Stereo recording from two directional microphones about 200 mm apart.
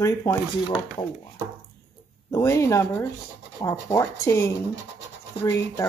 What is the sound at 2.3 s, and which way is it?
Speech, 15° left (ahead or behind).